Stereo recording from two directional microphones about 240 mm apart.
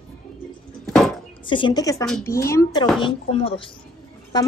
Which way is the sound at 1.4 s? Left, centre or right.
Centre.